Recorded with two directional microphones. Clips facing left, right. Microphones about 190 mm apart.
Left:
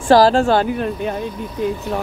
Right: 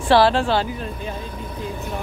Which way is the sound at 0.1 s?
40° left (ahead or behind).